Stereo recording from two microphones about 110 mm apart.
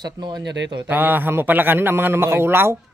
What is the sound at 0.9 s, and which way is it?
A man's voice, 20° right (ahead or behind).